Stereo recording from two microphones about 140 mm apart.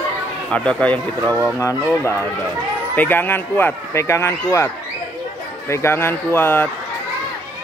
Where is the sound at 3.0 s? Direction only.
15° left (ahead or behind).